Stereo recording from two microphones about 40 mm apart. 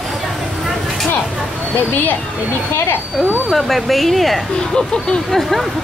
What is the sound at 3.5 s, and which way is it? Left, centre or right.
Speech, centre.